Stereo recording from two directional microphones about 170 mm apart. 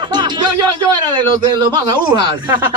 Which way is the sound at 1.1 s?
25° right (ahead or behind).